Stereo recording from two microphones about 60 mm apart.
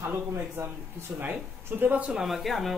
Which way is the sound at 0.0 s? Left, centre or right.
Right.